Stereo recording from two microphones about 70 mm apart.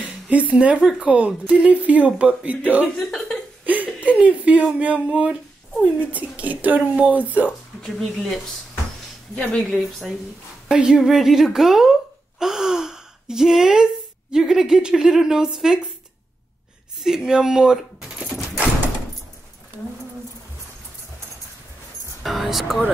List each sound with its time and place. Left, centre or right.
0.0 s a sound: right
0.7 s speech: centre
1.0 s speech: centre
3.0 s speech: centre
4.0 s speech: right
7.8 s a woman's voice: centre
9.3 s speech: centre
9.6 s a woman's voice: centre
10.7 s a woman's voice: centre
12.4 s gasp: centre
14.3 s speech: centre
17.0 s speech: centre
22.2 s speech: centre